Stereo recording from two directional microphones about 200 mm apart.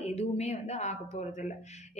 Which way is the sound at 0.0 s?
30° left (ahead or behind).